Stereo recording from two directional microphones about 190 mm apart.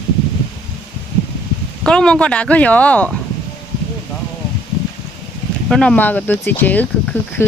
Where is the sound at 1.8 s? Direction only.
5° left (ahead or behind).